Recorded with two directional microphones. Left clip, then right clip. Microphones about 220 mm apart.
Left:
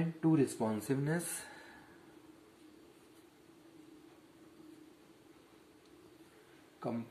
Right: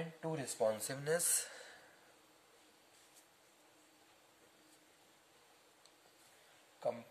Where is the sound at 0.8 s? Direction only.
50° right (ahead or behind).